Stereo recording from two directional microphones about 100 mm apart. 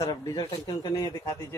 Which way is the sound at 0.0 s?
35° left (ahead or behind).